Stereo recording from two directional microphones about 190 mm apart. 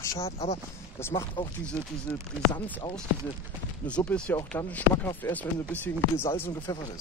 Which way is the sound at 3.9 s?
5° left (ahead or behind).